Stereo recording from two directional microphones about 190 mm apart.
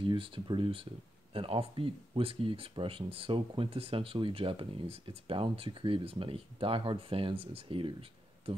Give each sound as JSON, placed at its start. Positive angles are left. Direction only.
{"t": 0.0, "sound": "speech", "side_deg": -25}